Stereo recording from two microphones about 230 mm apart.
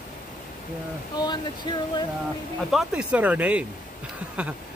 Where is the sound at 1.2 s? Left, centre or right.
Centre.